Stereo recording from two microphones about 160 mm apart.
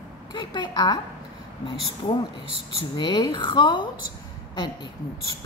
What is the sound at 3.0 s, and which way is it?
Speech, 30° left (ahead or behind).